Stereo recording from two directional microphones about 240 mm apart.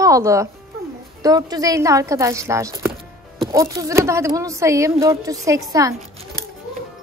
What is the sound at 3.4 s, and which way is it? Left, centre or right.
Music, centre.